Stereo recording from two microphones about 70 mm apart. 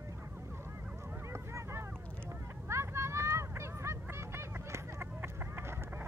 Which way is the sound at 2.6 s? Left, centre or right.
Right.